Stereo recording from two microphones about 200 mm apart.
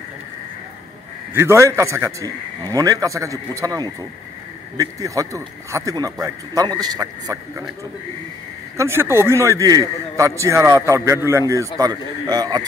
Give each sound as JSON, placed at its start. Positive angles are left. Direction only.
{"t": 1.3, "sound": "a man's voice", "side_deg": -10}
{"t": 8.7, "sound": "a man's voice", "side_deg": -10}